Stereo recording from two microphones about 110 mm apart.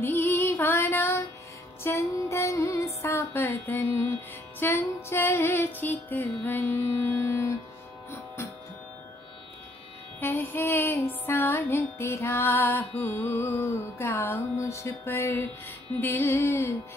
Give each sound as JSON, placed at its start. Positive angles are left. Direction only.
{"t": 0.0, "sound": "female singing", "side_deg": 20}
{"t": 1.8, "sound": "music", "side_deg": 25}
{"t": 10.2, "sound": "music", "side_deg": 20}